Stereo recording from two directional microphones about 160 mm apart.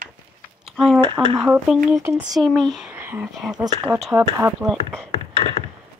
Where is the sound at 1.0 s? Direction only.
30° right (ahead or behind).